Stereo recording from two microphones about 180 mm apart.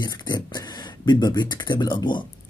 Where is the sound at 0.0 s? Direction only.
20° left (ahead or behind).